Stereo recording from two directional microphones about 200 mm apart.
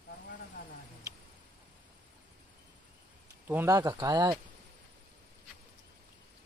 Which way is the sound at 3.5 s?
15° right (ahead or behind).